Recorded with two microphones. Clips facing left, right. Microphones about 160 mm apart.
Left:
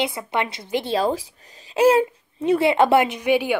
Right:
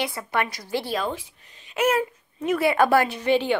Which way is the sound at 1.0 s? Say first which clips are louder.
Left 7 dB; 35° left (ahead or behind).